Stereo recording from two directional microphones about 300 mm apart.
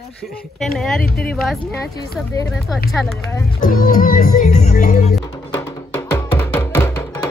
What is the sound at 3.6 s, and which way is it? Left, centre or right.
Music, left.